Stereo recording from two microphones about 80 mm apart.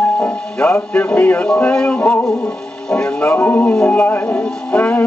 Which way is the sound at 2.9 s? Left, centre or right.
Centre.